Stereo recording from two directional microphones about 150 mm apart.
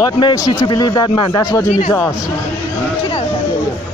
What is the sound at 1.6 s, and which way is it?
Speech, 50° left (ahead or behind).